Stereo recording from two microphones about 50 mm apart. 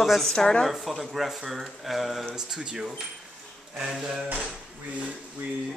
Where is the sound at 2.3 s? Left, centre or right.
Centre.